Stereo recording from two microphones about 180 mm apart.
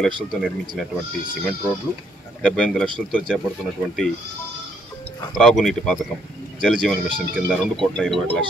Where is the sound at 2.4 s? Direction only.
5° left (ahead or behind).